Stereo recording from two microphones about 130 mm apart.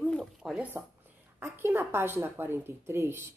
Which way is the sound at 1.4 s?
15° right (ahead or behind).